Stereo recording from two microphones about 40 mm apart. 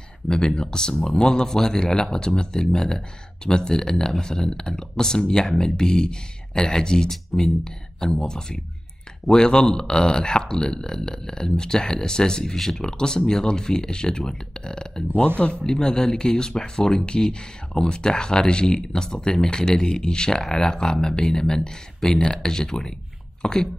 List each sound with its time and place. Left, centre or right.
0.3 s speech: centre
12.9 s speech: centre
15.2 s speech: left
15.6 s speech: centre